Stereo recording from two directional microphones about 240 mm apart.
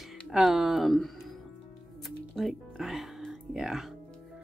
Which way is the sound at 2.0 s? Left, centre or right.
Centre.